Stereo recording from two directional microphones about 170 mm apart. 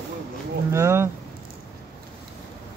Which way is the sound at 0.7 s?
15° right (ahead or behind).